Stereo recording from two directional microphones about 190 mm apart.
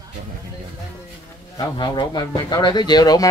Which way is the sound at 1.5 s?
25° left (ahead or behind).